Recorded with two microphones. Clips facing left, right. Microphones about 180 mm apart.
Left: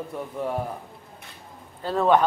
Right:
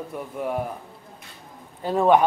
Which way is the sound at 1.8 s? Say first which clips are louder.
Right 2 dB; 15° right (ahead or behind).